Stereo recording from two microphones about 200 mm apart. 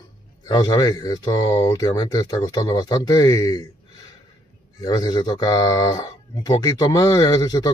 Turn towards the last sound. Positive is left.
turn(degrees=20)  # may be behind; listen again after turning